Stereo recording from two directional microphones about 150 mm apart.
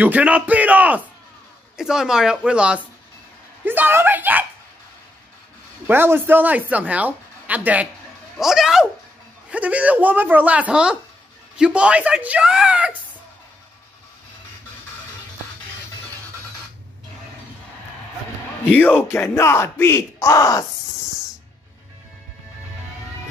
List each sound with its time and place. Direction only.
0.0 s speech: 10° right (ahead or behind)
5.9 s speech: 15° right (ahead or behind)
18.6 s speech: 10° left (ahead or behind)